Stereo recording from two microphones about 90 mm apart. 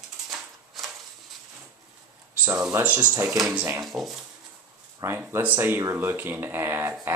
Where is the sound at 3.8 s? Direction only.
Centre (ahead or behind).